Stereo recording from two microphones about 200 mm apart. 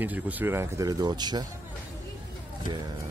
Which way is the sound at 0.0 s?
10° right (ahead or behind).